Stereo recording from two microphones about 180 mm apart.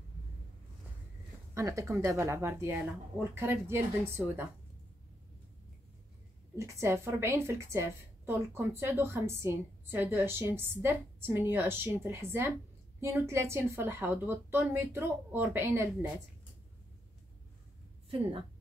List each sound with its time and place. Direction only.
1.5 s a woman's voice: 15° right (ahead or behind)
6.5 s a woman's voice: 15° right (ahead or behind)